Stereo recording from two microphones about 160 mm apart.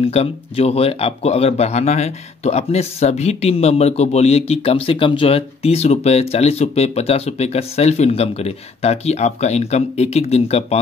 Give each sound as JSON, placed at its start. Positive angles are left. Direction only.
{"t": 0.0, "sound": "speech", "side_deg": 40}